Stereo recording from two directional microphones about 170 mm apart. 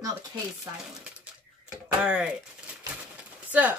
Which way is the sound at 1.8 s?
5° right (ahead or behind).